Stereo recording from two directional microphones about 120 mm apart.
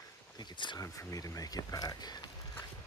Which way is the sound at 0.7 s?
30° left (ahead or behind).